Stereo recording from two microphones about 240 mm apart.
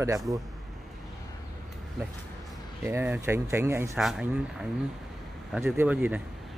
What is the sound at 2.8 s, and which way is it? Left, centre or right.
Speech, centre.